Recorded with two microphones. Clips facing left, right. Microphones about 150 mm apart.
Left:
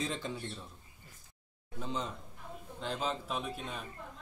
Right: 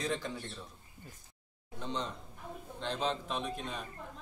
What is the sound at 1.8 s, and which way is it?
A man's voice, 5° left (ahead or behind).